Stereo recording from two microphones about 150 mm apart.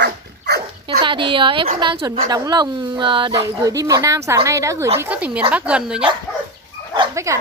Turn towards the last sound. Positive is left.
turn(degrees=-20)  # may be behind; listen again after turning